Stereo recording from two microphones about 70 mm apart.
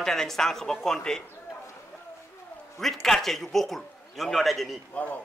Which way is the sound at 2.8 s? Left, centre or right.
Centre.